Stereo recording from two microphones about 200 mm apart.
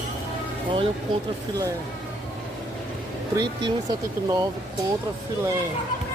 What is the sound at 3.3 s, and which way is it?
Speech, 20° right (ahead or behind).